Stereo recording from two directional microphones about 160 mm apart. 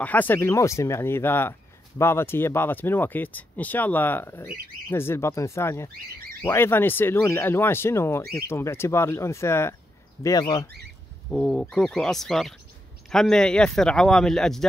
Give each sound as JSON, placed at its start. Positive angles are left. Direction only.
{"t": 0.0, "sound": "speech", "side_deg": 10}
{"t": 11.2, "sound": "speech", "side_deg": 0}